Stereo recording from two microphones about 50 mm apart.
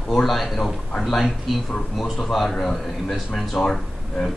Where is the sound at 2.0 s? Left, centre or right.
Centre.